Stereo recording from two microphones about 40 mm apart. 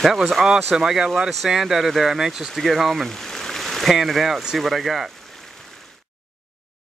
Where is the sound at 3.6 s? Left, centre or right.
Centre.